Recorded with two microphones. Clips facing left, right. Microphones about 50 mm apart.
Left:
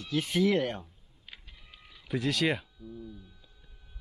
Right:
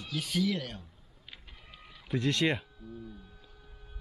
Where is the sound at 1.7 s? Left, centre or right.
Centre.